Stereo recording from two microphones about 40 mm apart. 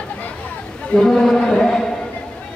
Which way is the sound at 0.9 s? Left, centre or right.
Centre.